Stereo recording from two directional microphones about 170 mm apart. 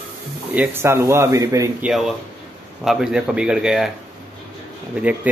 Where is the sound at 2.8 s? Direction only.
Centre (ahead or behind).